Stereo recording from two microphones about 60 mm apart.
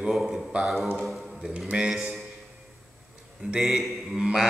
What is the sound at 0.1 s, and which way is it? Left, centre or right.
Mantra, centre.